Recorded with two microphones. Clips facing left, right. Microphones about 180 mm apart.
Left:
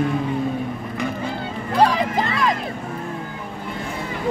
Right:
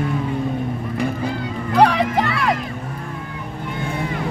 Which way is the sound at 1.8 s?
65° right (ahead or behind).